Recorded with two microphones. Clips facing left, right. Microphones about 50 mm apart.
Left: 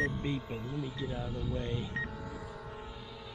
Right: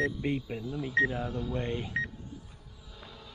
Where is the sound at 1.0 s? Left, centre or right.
Right.